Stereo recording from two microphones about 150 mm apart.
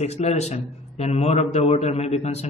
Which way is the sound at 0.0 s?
45° left (ahead or behind).